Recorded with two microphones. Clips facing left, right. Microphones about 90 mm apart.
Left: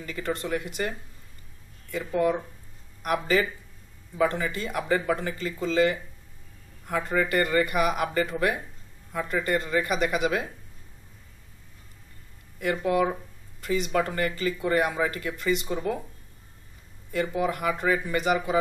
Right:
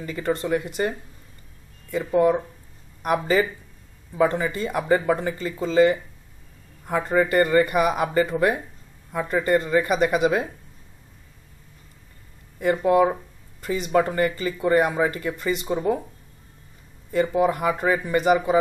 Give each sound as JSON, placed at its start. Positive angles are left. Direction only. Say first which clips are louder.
{"t": 0.0, "sound": "speech", "louder": "right 5 dB", "side_deg": -25}
{"t": 12.8, "sound": "speech", "louder": "right 6 dB", "side_deg": -25}
{"t": 13.9, "sound": "speech", "louder": "right 10 dB", "side_deg": -20}
{"t": 17.1, "sound": "speech", "louder": "right 6 dB", "side_deg": -25}